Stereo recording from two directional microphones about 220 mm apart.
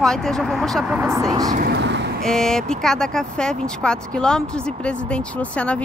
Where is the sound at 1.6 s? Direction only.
45° right (ahead or behind).